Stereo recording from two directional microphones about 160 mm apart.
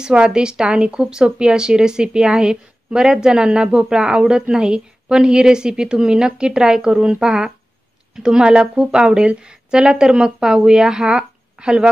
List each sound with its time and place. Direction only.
0.0 s a woman's voice: 5° right (ahead or behind)